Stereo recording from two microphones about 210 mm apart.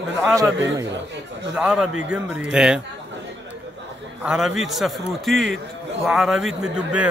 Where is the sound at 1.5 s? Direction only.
5° right (ahead or behind).